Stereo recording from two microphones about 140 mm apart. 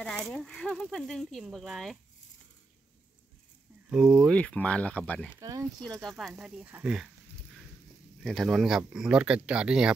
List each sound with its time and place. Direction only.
0.0 s speech: 5° left (ahead or behind)
3.9 s speech: 5° right (ahead or behind)
4.3 s speech: 10° left (ahead or behind)
5.4 s speech: 25° right (ahead or behind)
5.9 s speech: centre (ahead or behind)
8.2 s speech: centre (ahead or behind)